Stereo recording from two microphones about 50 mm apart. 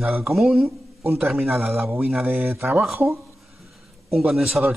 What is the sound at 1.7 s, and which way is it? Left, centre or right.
Speech, right.